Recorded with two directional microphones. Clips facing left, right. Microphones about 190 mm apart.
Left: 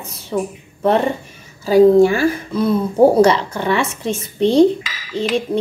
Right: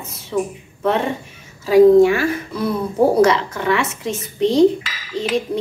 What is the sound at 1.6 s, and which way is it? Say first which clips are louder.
A woman's voice: even; 30° left (ahead or behind).